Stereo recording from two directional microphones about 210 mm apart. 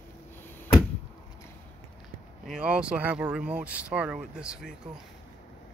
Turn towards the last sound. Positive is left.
turn(degrees=-5)  # may be behind; listen again after turning